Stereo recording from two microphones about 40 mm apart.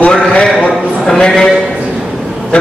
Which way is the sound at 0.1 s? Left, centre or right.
Left.